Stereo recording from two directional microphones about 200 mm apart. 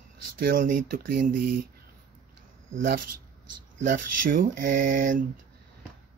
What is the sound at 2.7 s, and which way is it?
Speech, 70° right (ahead or behind).